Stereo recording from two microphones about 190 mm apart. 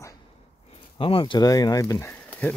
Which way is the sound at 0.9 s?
25° left (ahead or behind).